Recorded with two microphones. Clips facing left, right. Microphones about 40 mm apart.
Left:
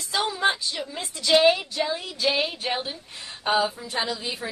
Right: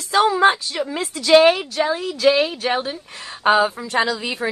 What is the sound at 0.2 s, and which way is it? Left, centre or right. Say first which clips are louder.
A woman's voice: right 9 dB; right.